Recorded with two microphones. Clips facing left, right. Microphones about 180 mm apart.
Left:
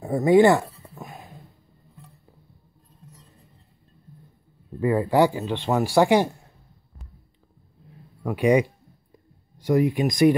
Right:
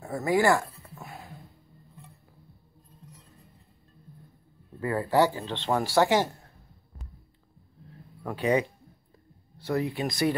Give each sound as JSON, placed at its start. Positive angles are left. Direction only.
{"t": 0.0, "sound": "a sound", "side_deg": 20}
{"t": 4.7, "sound": "speech", "side_deg": 15}
{"t": 8.2, "sound": "speech", "side_deg": 10}